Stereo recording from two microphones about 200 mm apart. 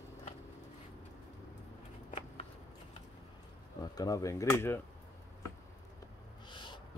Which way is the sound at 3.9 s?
15° left (ahead or behind).